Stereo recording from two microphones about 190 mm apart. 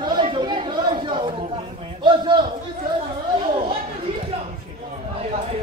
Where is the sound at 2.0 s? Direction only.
25° right (ahead or behind).